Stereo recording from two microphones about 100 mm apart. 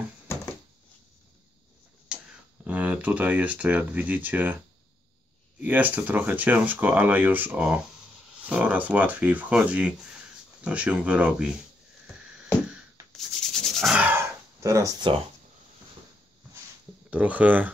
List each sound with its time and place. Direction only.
2.1 s a sound: 5° right (ahead or behind)
2.6 s speech: 15° right (ahead or behind)
5.6 s speech: 15° right (ahead or behind)
13.5 s rub: 5° left (ahead or behind)
13.9 s a sound: 20° right (ahead or behind)
17.1 s speech: 15° right (ahead or behind)